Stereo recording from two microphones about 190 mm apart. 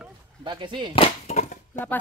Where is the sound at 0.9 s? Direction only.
30° left (ahead or behind).